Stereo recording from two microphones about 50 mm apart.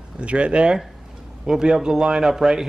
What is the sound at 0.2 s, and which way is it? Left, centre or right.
A man's voice, right.